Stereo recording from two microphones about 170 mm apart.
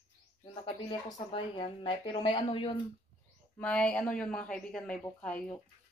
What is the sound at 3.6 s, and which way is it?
Speech, 5° left (ahead or behind).